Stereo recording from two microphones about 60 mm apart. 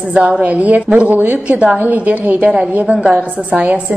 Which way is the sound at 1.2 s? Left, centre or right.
Right.